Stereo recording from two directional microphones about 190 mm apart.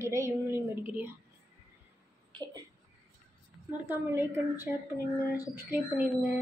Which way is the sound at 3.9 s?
10° right (ahead or behind).